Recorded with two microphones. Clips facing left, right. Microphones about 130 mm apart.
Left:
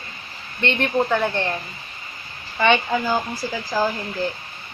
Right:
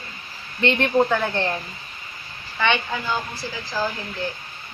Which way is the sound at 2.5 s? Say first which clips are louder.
Left 5 dB; 40° left (ahead or behind).